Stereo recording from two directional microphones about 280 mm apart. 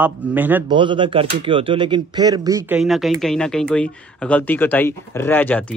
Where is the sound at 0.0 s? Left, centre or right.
Centre.